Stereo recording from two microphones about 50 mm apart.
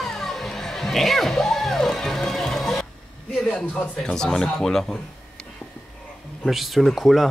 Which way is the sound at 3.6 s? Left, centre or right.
Left.